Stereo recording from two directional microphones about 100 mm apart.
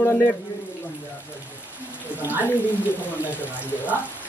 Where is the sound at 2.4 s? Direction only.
20° left (ahead or behind).